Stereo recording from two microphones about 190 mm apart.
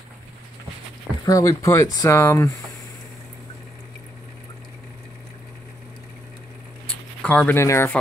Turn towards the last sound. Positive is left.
turn(degrees=15)  # may be behind; listen again after turning